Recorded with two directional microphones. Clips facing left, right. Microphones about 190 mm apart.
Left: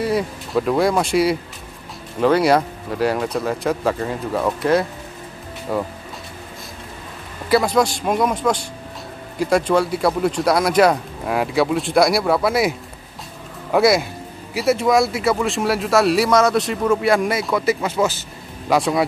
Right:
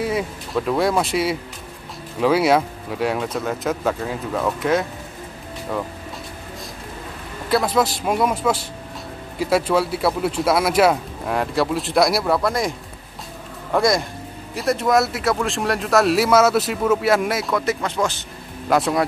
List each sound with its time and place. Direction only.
0.0 s speech: centre (ahead or behind)
7.4 s speech: centre (ahead or behind)